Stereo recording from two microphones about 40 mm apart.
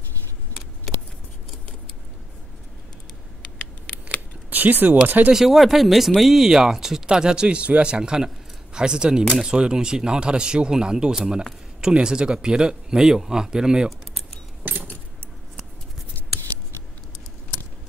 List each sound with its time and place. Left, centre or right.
3.5 s scissors: left
4.5 s speech: right
5.3 s speech: centre
14.6 s keys jangling: right